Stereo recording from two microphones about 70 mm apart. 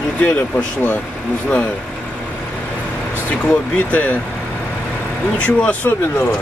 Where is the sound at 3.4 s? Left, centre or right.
Left.